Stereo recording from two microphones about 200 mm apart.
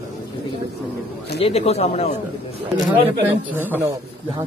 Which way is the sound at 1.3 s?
30° left (ahead or behind).